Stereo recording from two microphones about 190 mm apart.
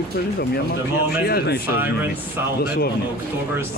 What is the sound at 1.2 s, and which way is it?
Speech, 55° left (ahead or behind).